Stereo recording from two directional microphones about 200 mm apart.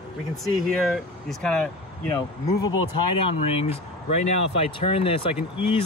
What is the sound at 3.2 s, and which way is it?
Speech, 30° left (ahead or behind).